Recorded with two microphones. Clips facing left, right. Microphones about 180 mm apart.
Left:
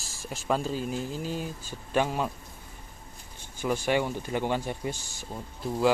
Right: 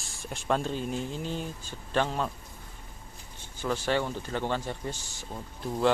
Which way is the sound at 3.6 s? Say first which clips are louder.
Left 2 dB; 15° left (ahead or behind).